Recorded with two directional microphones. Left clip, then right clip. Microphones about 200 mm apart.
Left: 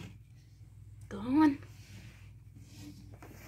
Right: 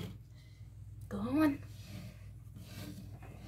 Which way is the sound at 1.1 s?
15° left (ahead or behind).